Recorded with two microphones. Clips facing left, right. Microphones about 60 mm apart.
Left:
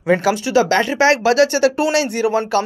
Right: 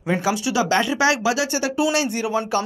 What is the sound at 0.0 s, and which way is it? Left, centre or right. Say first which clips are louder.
Speech: left 5 dB; left.